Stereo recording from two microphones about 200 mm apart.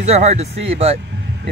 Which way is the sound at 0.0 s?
35° right (ahead or behind).